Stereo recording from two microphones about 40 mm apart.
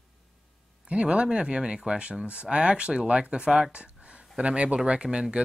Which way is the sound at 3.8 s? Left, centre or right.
Right.